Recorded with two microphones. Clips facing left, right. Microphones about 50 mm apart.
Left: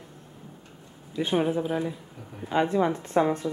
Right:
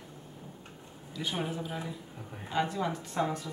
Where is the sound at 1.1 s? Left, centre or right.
Left.